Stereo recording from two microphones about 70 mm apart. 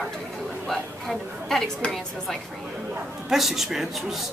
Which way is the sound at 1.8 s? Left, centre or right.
Centre.